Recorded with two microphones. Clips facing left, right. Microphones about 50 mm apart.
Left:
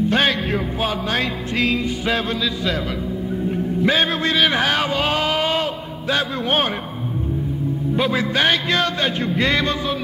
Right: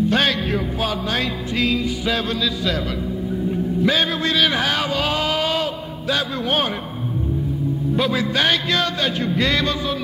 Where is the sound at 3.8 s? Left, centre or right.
Left.